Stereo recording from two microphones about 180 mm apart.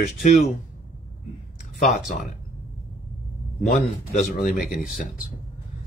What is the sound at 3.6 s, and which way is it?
Speech, 55° left (ahead or behind).